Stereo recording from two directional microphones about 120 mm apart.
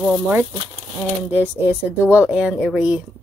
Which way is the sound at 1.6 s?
15° right (ahead or behind).